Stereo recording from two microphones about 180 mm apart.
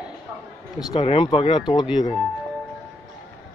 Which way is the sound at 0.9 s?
30° left (ahead or behind).